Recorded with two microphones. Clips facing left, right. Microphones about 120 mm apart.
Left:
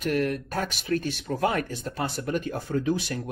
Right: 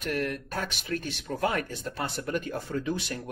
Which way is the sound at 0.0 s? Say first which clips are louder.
Left 5 dB; 35° left (ahead or behind).